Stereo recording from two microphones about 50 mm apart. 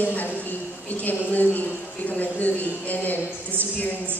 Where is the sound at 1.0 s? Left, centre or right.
Left.